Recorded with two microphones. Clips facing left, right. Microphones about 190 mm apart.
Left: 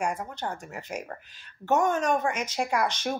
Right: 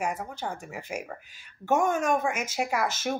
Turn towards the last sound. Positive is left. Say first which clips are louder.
# left 1 dB
turn(degrees=-5)  # may be behind; listen again after turning